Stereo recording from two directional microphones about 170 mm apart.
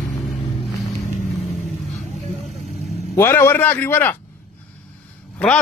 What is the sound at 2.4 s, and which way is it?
Vehicle, 40° left (ahead or behind).